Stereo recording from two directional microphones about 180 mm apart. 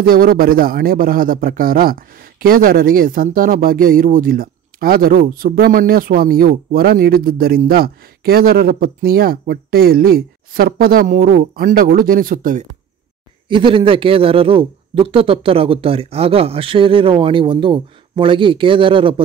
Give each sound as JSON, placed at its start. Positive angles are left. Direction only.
{"t": 0.0, "sound": "a man's voice", "side_deg": -55}
{"t": 13.5, "sound": "a man's voice", "side_deg": -30}